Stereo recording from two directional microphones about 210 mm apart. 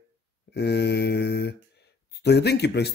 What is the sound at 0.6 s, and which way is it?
Speech, 50° left (ahead or behind).